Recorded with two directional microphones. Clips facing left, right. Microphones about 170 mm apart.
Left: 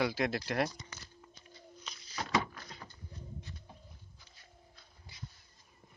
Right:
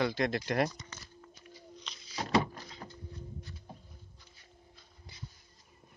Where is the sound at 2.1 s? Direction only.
30° right (ahead or behind).